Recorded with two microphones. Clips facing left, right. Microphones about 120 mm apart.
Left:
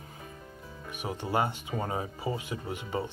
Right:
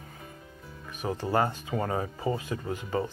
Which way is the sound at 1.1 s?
20° left (ahead or behind).